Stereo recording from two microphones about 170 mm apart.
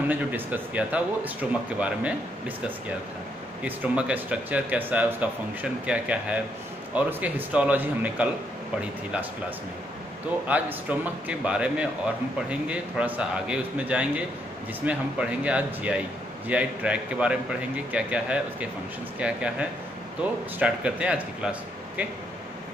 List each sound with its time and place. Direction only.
0.1 s speech: 10° right (ahead or behind)
3.6 s speech: 10° right (ahead or behind)
10.4 s speech: 10° right (ahead or behind)